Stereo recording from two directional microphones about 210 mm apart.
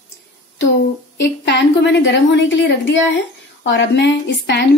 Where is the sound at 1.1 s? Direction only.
55° left (ahead or behind).